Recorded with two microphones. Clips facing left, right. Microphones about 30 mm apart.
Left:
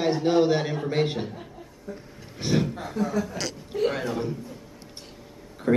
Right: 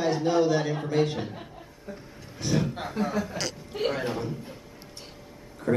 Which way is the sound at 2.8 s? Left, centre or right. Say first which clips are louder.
Left 1 dB; right.